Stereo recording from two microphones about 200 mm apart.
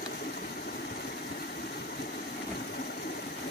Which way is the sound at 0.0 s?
50° left (ahead or behind).